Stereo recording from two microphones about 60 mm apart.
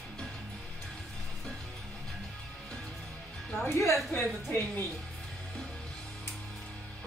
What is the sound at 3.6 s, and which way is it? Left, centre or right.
Speech, left.